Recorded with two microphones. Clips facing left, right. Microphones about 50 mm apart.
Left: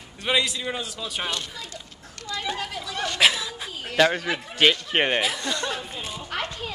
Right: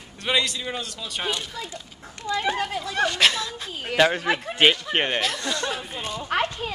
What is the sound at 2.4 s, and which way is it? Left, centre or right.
Speech, right.